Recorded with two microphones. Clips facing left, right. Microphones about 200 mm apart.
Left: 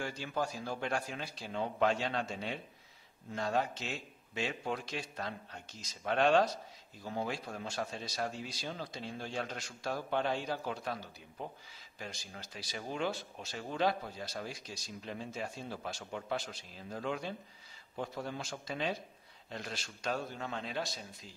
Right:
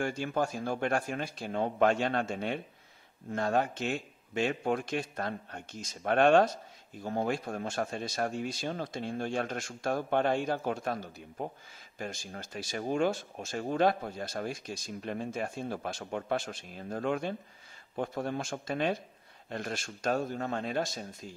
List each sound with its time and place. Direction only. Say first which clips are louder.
0.0 s speech: right 6 dB; 50° right (ahead or behind)